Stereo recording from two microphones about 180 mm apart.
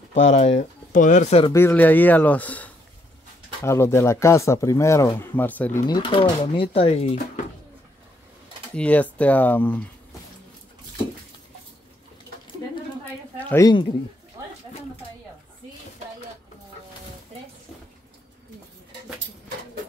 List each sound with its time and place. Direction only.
0.1 s speech: 40° left (ahead or behind)
1.5 s speech: 15° left (ahead or behind)
5.9 s speech: 25° left (ahead or behind)
8.7 s speech: 10° left (ahead or behind)
13.4 s a sound: 10° left (ahead or behind)